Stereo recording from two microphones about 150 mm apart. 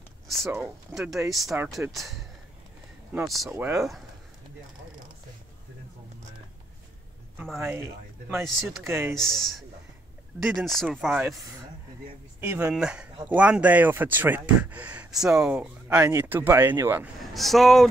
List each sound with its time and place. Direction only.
0.9 s speech: 5° right (ahead or behind)
3.1 s speech: 15° right (ahead or behind)
7.5 s speech: 15° right (ahead or behind)
9.2 s speech: 5° left (ahead or behind)
12.4 s speech: 10° right (ahead or behind)
17.2 s speech: centre (ahead or behind)